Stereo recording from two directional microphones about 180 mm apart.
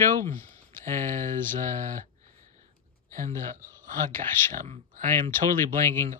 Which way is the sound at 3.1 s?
45° right (ahead or behind).